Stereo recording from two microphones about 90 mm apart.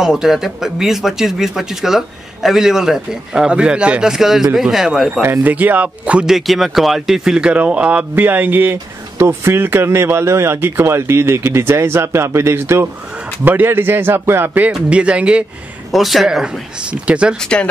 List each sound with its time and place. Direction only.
0.0 s speech: 5° right (ahead or behind)
5.2 s speech: 20° right (ahead or behind)
15.9 s speech: centre (ahead or behind)
17.4 s speech: 10° left (ahead or behind)